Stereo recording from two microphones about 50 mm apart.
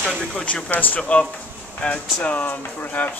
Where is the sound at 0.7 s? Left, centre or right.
Left.